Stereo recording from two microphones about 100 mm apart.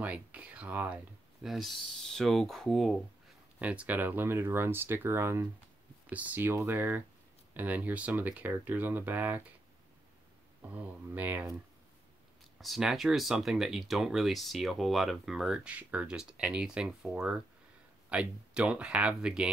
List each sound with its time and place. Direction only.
0.0 s speech: 15° right (ahead or behind)
1.4 s speech: centre (ahead or behind)
3.5 s speech: 15° right (ahead or behind)
10.7 s speech: 20° right (ahead or behind)
12.5 s speech: centre (ahead or behind)